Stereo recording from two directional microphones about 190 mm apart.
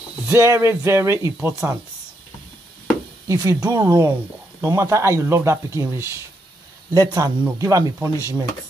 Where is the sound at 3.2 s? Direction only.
15° right (ahead or behind).